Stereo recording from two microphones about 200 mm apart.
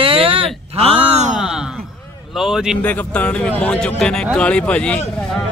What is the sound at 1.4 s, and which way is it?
Speech, 5° right (ahead or behind).